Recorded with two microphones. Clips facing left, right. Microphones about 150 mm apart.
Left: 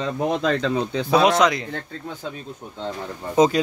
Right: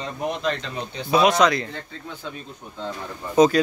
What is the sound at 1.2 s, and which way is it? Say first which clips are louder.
Speech: right 2 dB; 15° left (ahead or behind).